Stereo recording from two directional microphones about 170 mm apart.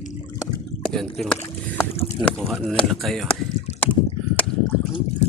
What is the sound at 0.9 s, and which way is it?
Speech, centre (ahead or behind).